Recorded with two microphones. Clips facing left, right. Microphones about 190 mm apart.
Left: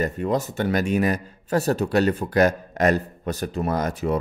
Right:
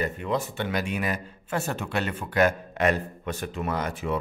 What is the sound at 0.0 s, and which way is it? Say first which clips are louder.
Speech: left 4 dB; 40° left (ahead or behind).